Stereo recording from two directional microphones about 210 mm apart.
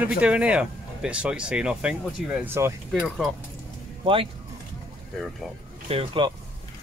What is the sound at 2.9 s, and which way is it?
Speech, centre (ahead or behind).